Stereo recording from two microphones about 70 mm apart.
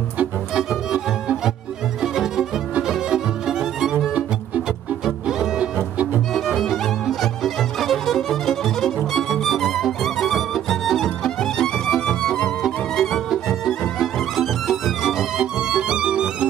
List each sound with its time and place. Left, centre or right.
0.6 s music: centre
5.0 s music: centre
5.8 s music: right
6.3 s music: centre